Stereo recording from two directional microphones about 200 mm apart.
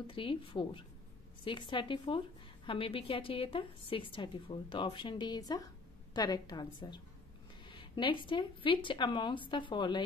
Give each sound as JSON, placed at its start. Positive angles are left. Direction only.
{"t": 0.0, "sound": "a woman's voice", "side_deg": 25}